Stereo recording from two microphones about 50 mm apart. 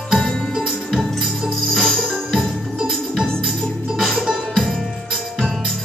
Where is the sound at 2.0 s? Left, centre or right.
Centre.